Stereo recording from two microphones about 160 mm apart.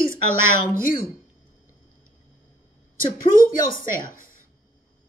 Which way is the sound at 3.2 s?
60° left (ahead or behind).